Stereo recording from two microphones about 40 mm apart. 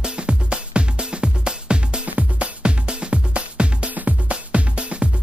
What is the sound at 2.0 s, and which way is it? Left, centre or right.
Music, right.